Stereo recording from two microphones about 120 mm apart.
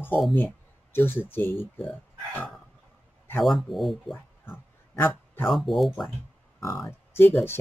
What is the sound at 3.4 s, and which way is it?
Speech, centre (ahead or behind).